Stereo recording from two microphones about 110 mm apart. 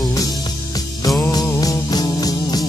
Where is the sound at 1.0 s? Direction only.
35° left (ahead or behind).